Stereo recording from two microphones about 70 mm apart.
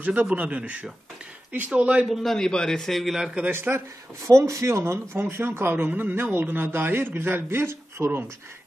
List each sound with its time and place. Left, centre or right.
0.0 s a man's voice: right
2.0 s a man's voice: centre
3.5 s a man's voice: right
5.9 s a man's voice: right